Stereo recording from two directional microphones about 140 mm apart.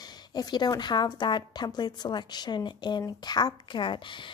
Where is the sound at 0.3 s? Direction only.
30° left (ahead or behind).